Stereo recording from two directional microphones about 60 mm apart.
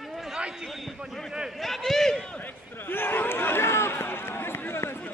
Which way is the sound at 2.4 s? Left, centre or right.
Left.